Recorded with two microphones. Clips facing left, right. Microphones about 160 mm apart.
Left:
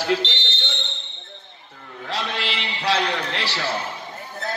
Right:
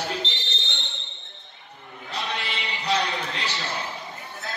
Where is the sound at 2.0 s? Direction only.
80° left.